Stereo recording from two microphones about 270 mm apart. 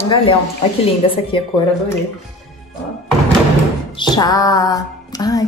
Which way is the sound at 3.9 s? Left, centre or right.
Centre.